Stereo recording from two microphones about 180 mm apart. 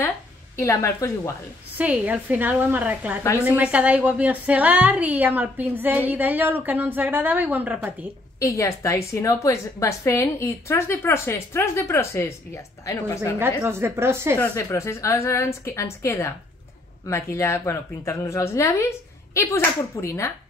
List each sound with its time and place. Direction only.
0.6 s a woman's voice: 15° left (ahead or behind)
1.8 s a woman's voice: 10° right (ahead or behind)
8.5 s a woman's voice: 15° left (ahead or behind)
13.4 s a woman's voice: 15° right (ahead or behind)
14.5 s a woman's voice: 15° left (ahead or behind)